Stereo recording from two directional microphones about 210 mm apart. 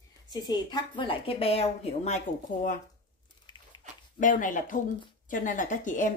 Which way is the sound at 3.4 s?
20° left (ahead or behind).